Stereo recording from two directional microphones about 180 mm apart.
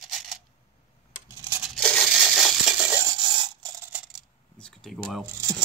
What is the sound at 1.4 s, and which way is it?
Tearing, 10° right (ahead or behind).